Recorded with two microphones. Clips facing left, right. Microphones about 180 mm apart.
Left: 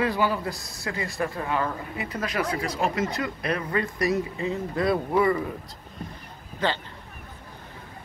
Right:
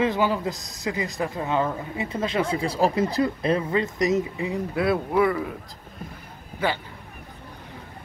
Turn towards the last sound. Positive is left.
turn(degrees=-10)  # may be behind; listen again after turning